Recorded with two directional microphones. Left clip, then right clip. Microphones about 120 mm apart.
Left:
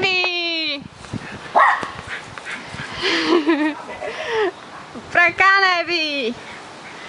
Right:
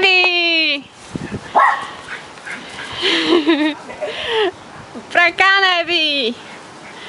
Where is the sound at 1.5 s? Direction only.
Centre (ahead or behind).